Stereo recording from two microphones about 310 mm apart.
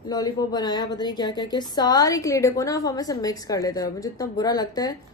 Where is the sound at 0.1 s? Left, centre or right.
Centre.